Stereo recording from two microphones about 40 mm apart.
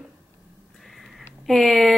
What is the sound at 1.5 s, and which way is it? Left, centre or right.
Speech, centre.